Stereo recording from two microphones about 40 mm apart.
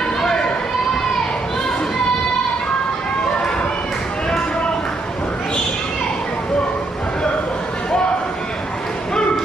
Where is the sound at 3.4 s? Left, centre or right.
Centre.